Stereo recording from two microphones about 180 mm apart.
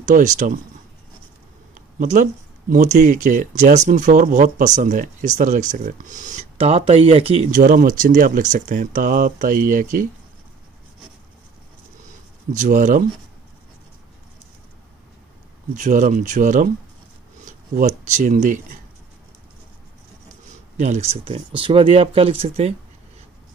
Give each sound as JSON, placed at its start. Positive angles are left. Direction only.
{"t": 0.0, "sound": "speech", "side_deg": -45}
{"t": 2.0, "sound": "speech", "side_deg": -45}
{"t": 6.6, "sound": "speech", "side_deg": -35}
{"t": 7.5, "sound": "speech", "side_deg": -50}
{"t": 12.5, "sound": "speech", "side_deg": -45}
{"t": 15.7, "sound": "speech", "side_deg": -45}
{"t": 20.8, "sound": "speech", "side_deg": -35}